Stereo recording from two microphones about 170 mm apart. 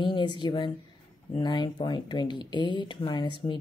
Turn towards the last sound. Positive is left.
turn(degrees=25)  # may be behind; listen again after turning